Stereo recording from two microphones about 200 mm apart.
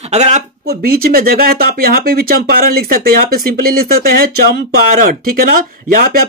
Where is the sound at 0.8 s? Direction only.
50° right (ahead or behind).